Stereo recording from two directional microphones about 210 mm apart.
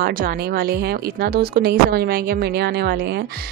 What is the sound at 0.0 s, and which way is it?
Speech, 45° right (ahead or behind).